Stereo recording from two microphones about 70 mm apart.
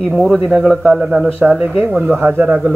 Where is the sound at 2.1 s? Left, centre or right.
Right.